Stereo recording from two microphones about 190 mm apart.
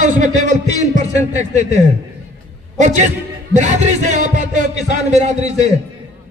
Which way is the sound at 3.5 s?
40° right (ahead or behind).